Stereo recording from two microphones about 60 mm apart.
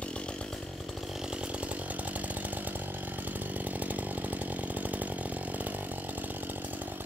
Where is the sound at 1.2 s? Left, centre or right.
Centre.